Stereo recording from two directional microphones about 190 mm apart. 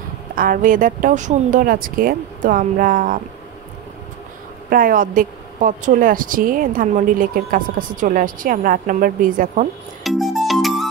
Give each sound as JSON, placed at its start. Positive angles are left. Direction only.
{"t": 0.4, "sound": "a woman's voice", "side_deg": -45}
{"t": 4.6, "sound": "a woman's voice", "side_deg": -45}
{"t": 10.0, "sound": "music", "side_deg": 0}